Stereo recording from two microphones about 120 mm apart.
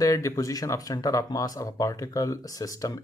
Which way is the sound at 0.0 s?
30° left (ahead or behind).